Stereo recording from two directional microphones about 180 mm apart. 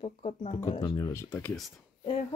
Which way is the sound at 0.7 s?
25° left (ahead or behind).